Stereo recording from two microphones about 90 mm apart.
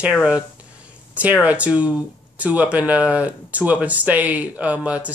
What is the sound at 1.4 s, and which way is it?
Speech, 15° right (ahead or behind).